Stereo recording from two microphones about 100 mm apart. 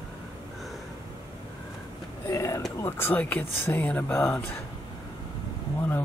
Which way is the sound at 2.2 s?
30° left (ahead or behind).